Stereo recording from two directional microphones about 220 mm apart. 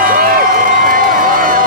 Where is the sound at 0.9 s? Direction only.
40° right (ahead or behind).